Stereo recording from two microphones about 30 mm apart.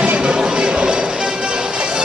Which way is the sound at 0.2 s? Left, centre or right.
Right.